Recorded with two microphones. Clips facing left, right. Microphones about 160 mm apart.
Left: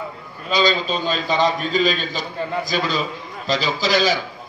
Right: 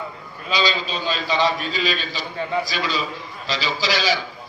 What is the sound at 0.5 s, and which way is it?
A man's voice, 50° left (ahead or behind).